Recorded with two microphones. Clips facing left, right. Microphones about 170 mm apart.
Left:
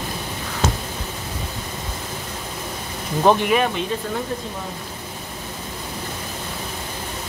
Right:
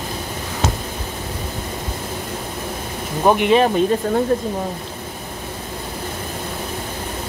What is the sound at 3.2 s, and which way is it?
Speech, 10° right (ahead or behind).